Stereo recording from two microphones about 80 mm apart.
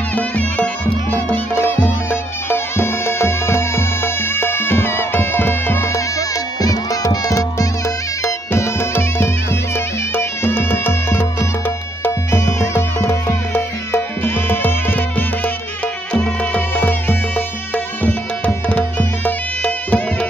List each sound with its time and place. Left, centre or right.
0.1 s music: centre
6.1 s music: left; by 20.2 s centre